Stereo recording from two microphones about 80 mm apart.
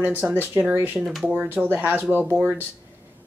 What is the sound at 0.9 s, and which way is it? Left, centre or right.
Speech, centre.